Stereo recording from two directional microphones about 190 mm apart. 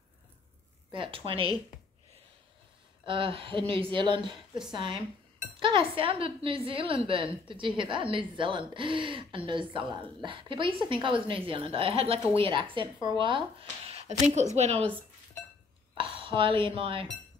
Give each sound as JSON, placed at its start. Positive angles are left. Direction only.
{"t": 0.9, "sound": "a woman's voice", "side_deg": -30}
{"t": 3.1, "sound": "a woman's voice", "side_deg": -30}
{"t": 5.6, "sound": "a woman's voice", "side_deg": -25}
{"t": 16.0, "sound": "speech", "side_deg": -25}